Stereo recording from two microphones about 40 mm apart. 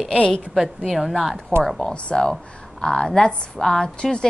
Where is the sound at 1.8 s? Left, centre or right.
Left.